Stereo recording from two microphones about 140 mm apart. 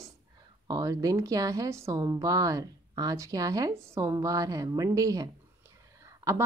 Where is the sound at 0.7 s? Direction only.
25° right (ahead or behind).